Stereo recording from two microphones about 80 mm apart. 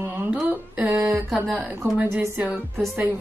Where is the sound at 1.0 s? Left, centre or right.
Right.